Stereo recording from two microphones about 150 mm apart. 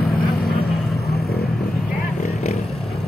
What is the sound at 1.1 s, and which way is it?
Vehicle, 90° left.